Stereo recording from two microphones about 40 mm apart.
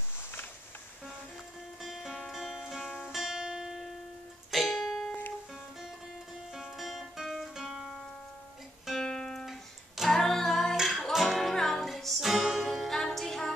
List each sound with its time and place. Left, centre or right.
1.8 s music: centre
3.1 s guitar: centre
3.3 s music: centre
4.5 s music: centre
6.5 s music: centre
9.0 s music: centre
10.0 s female singing: centre
10.8 s music: centre
12.4 s music: centre
12.6 s music: centre